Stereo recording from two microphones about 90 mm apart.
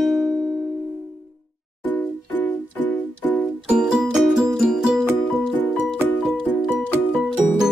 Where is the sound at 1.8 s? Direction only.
20° left (ahead or behind).